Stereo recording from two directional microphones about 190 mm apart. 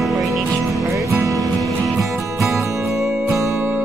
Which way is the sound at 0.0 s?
Centre (ahead or behind).